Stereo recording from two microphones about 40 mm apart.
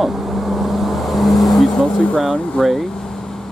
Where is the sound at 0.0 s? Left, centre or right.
Centre.